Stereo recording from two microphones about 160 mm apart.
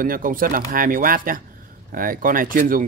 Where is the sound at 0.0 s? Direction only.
60° right (ahead or behind).